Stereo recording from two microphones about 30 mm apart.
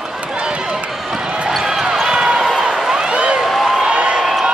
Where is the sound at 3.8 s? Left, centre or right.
Right.